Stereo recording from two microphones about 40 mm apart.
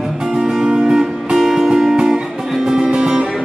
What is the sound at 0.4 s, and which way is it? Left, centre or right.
Music, centre.